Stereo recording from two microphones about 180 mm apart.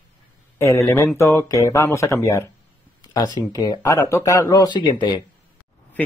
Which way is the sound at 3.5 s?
20° left (ahead or behind).